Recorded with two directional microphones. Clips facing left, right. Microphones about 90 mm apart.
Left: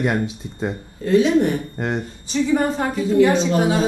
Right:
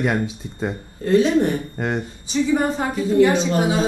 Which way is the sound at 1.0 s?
40° right (ahead or behind).